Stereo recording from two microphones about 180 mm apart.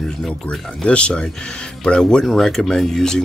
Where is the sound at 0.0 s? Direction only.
5° left (ahead or behind).